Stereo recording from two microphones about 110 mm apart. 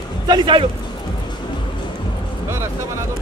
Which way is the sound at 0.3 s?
50° right (ahead or behind).